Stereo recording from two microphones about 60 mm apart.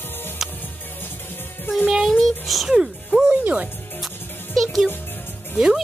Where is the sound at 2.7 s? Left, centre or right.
Centre.